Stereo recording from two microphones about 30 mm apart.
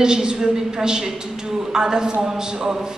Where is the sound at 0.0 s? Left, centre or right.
Right.